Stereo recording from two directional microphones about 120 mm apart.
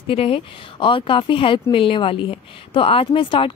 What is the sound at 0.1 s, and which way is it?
Speech, 50° left (ahead or behind).